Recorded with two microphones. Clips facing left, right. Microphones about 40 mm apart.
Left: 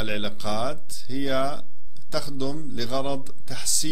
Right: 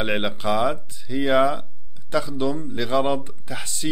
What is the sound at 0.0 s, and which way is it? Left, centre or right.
Speech, right.